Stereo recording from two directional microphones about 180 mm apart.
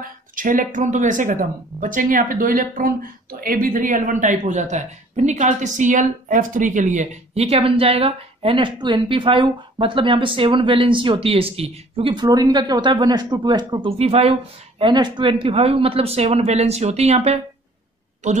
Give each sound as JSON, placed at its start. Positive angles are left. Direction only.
{"t": 0.0, "sound": "speech", "side_deg": -50}